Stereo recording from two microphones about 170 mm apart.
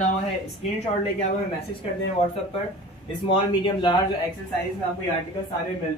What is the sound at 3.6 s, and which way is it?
Speech, 30° left (ahead or behind).